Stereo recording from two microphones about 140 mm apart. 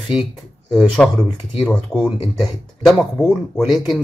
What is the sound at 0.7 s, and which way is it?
Speech, centre (ahead or behind).